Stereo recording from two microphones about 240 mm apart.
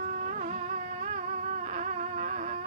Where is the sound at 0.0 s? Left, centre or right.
Right.